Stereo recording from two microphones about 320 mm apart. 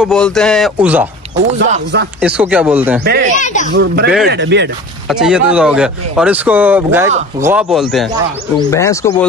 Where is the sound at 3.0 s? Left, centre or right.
Right.